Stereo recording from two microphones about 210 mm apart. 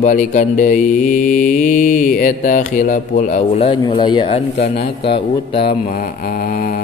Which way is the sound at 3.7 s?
20° left (ahead or behind).